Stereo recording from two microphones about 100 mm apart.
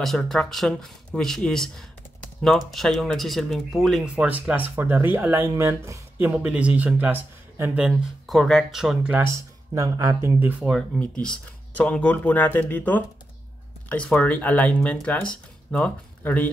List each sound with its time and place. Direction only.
0.0 s speech: centre (ahead or behind)
4.0 s speech: 10° right (ahead or behind); by 5.9 s 30° right (ahead or behind)
6.1 s speech: 15° right (ahead or behind)
8.3 s speech: centre (ahead or behind)
9.8 s speech: 35° right (ahead or behind)
10.4 s speech: 15° right (ahead or behind)
11.0 s speech: 10° left (ahead or behind)